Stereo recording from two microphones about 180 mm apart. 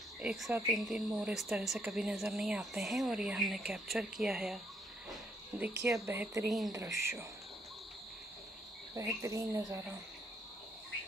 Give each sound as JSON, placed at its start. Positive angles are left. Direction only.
{"t": 0.2, "sound": "speech", "side_deg": -5}
{"t": 5.9, "sound": "speech", "side_deg": -15}
{"t": 8.9, "sound": "speech", "side_deg": -15}